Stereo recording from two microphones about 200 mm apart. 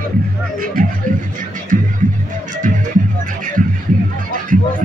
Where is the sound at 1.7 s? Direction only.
40° right (ahead or behind).